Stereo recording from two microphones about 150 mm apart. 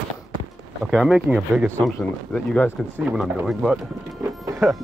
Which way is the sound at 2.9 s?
5° right (ahead or behind).